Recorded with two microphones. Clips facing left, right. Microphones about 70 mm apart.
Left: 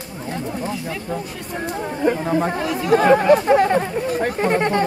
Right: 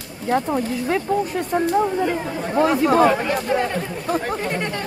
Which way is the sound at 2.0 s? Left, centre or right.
Left.